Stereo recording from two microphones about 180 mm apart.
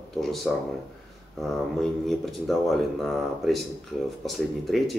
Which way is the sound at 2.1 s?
Centre (ahead or behind).